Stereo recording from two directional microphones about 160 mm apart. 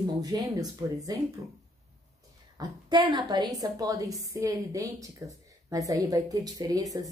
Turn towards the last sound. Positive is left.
turn(degrees=-20)  # may be behind; listen again after turning